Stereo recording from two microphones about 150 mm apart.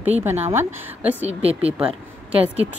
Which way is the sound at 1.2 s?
40° right (ahead or behind).